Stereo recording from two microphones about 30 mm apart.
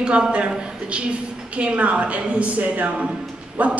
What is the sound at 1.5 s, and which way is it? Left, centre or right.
A woman's voice, right.